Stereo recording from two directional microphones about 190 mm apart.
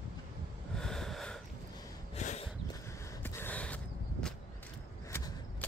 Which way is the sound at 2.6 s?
15° left (ahead or behind).